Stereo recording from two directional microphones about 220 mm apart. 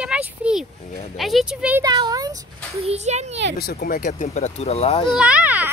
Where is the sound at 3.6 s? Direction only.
45° left (ahead or behind); by 5.1 s 25° left (ahead or behind).